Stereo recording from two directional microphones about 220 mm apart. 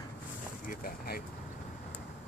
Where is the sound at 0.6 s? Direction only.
40° left (ahead or behind).